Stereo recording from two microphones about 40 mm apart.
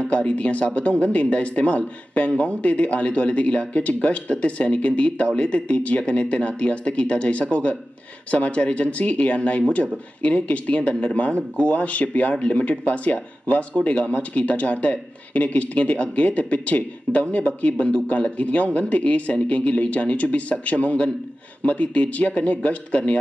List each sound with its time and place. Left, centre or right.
0.1 s speech: left